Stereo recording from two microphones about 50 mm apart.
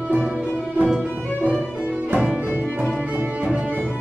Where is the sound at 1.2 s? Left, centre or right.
Left.